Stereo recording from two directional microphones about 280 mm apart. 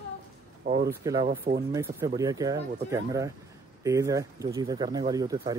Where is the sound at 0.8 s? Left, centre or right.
Centre.